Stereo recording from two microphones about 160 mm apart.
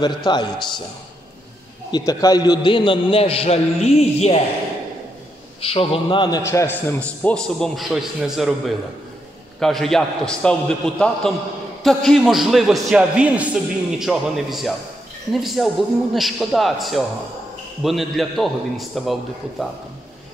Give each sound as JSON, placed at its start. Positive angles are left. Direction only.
{"t": 0.0, "sound": "a man's voice", "side_deg": 25}
{"t": 1.9, "sound": "a man's voice", "side_deg": 25}
{"t": 5.6, "sound": "a man's voice", "side_deg": 35}
{"t": 6.4, "sound": "a man's voice", "side_deg": 15}